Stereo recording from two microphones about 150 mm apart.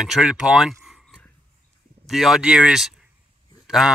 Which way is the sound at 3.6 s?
5° right (ahead or behind).